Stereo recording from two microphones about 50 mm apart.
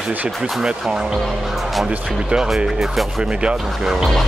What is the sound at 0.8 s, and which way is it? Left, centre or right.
Speech, centre.